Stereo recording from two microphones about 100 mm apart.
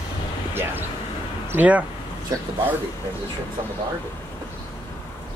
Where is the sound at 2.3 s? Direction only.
40° right (ahead or behind).